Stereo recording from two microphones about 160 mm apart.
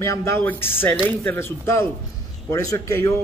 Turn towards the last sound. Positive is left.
turn(degrees=20)  # may be behind; listen again after turning